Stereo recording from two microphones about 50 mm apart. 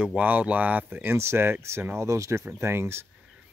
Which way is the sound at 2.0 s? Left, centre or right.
Right.